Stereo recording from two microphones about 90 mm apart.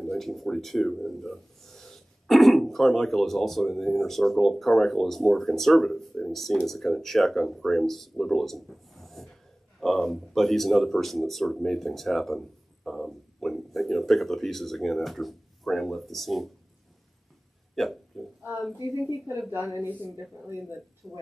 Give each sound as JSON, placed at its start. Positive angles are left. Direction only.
{"t": 0.0, "sound": "speech", "side_deg": 0}
{"t": 17.7, "sound": "hiccup", "side_deg": 0}
{"t": 19.5, "sound": "speech", "side_deg": -25}
{"t": 21.0, "sound": "speech", "side_deg": 0}